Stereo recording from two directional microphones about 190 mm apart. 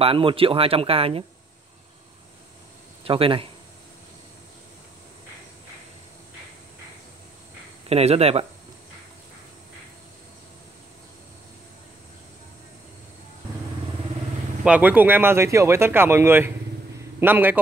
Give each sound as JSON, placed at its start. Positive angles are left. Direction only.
{"t": 0.0, "sound": "speech", "side_deg": -30}
{"t": 3.0, "sound": "speech", "side_deg": -30}
{"t": 7.9, "sound": "speech", "side_deg": -30}
{"t": 14.6, "sound": "speech", "side_deg": -10}